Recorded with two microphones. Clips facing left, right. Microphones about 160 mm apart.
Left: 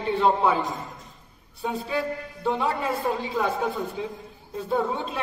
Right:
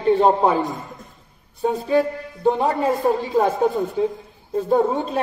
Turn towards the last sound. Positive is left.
turn(degrees=-40)  # may be behind; listen again after turning